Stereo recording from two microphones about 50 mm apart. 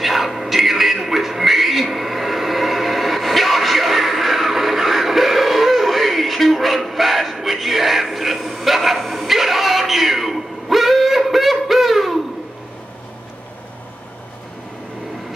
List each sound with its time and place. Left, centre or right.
0.0 s television: centre